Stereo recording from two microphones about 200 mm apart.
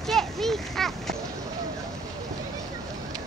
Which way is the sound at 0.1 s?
Centre (ahead or behind).